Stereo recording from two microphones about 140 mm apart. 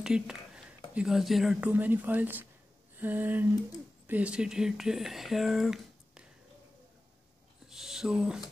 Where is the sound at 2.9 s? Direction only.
15° right (ahead or behind).